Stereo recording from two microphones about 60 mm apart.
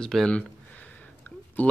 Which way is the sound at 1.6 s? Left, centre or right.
Left.